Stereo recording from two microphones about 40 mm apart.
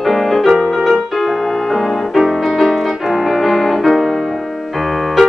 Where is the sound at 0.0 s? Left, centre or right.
Centre.